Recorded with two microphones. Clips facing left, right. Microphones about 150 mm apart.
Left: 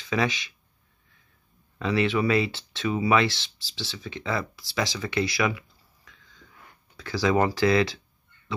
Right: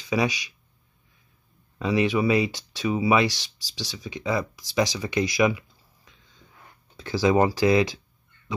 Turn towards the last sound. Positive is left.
turn(degrees=-15)  # may be behind; listen again after turning